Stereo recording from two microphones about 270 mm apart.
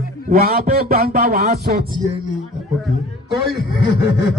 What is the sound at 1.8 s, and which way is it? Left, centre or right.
Speech, right.